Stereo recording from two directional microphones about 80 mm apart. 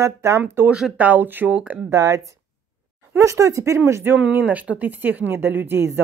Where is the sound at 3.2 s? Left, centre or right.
Right.